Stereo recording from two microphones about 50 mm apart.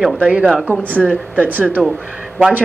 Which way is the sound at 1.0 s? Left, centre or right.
Left.